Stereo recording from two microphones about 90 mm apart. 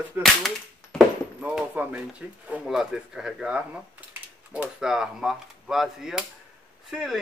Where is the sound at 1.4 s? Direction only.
10° right (ahead or behind).